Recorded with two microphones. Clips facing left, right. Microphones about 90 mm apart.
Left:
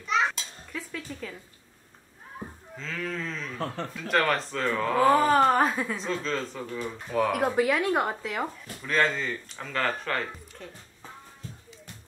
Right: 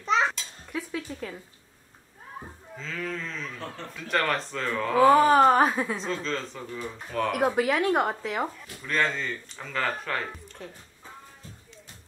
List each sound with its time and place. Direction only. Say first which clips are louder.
0.0 s a sound: right 2 dB; 35° right (ahead or behind)
0.7 s cutlery: right 5 dB; 10° right (ahead or behind)
2.8 s speech: even; centre (ahead or behind)